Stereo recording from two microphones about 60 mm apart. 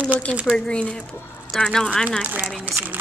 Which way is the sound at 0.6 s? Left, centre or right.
Centre.